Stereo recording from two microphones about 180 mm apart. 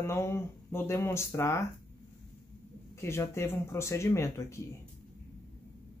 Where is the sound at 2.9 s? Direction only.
15° left (ahead or behind).